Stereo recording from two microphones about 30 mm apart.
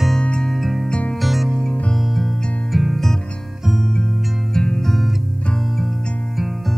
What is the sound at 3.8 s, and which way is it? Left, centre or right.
Music, left.